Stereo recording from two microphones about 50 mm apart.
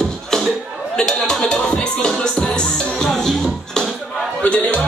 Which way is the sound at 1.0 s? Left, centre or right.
Centre.